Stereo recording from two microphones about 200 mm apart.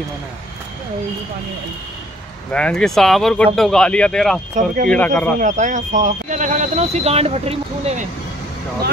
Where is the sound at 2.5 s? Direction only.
5° left (ahead or behind).